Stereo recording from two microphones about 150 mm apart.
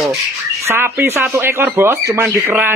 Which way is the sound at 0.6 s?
15° right (ahead or behind).